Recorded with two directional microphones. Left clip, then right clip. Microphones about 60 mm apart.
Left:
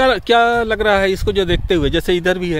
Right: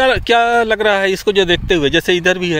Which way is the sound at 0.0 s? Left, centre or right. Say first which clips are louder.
Right 1 dB; centre.